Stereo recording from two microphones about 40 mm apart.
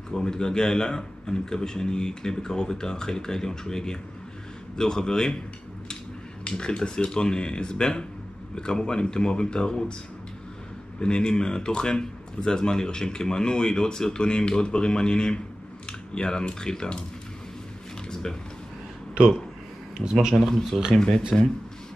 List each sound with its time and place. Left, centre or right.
0.1 s a man's voice: centre
6.4 s speech: left
11.0 s speech: left
20.0 s speech: centre
20.7 s a man's voice: centre